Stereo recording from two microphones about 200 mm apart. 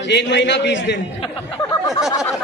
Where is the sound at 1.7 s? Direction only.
15° left (ahead or behind).